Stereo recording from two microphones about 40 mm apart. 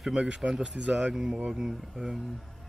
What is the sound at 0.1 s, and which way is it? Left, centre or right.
Speech, right.